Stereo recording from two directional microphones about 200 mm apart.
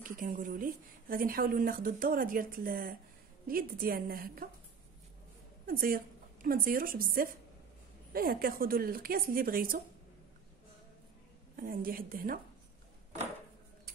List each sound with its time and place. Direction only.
0.0 s a woman's voice: 45° right (ahead or behind)
5.7 s a woman's voice: 45° right (ahead or behind)
11.5 s a woman's voice: 45° right (ahead or behind)